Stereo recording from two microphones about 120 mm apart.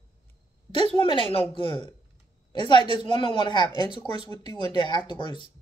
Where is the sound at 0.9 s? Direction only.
45° left (ahead or behind).